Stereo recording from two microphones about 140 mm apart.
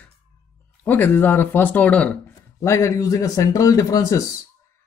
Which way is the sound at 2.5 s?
20° left (ahead or behind).